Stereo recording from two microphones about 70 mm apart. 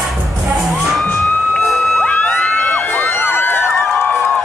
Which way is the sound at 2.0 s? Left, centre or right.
Centre.